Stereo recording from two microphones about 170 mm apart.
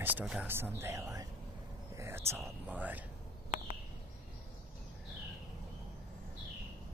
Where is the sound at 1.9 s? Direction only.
15° right (ahead or behind).